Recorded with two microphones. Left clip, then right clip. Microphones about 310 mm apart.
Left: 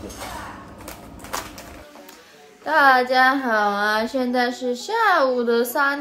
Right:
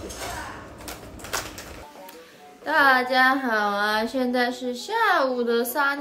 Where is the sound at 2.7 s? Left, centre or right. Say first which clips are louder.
Left 3 dB; centre.